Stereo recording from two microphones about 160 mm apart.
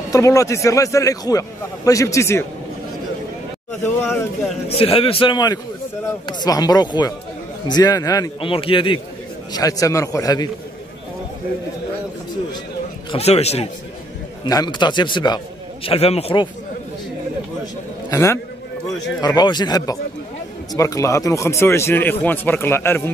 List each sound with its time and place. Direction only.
0.1 s a man's voice: 20° left (ahead or behind)
3.8 s speech: 15° left (ahead or behind)
4.6 s a man's voice: 35° left (ahead or behind)
13.1 s a man's voice: 40° left (ahead or behind)
14.4 s a man's voice: 25° left (ahead or behind)
18.1 s speech: 15° left (ahead or behind)
19.2 s a man's voice: 25° left (ahead or behind)